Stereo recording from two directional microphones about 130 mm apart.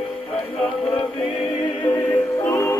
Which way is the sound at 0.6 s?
45° left (ahead or behind).